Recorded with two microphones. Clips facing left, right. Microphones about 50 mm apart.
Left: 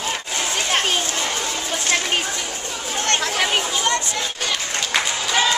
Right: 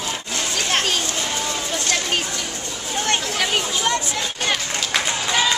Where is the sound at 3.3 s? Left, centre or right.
Centre.